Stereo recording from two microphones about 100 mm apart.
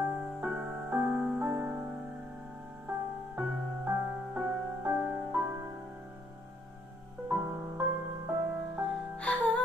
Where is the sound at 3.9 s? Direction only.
15° right (ahead or behind).